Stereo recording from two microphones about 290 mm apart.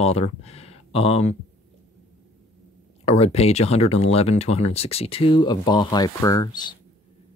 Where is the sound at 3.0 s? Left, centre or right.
Left.